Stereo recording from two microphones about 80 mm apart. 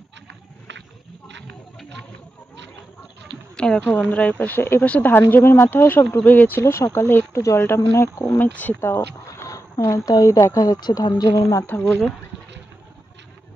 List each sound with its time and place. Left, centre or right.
1.8 s a sound: centre
3.5 s speech: centre; by 4.8 s left
4.8 s speech: centre
5.1 s speech: left
6.6 s speech: left
8.8 s speech: left